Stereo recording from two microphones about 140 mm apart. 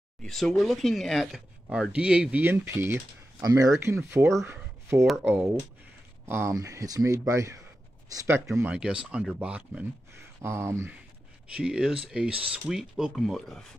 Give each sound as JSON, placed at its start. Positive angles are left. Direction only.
{"t": 0.2, "sound": "speech", "side_deg": 5}
{"t": 8.7, "sound": "speech", "side_deg": -5}
{"t": 11.5, "sound": "speech", "side_deg": -5}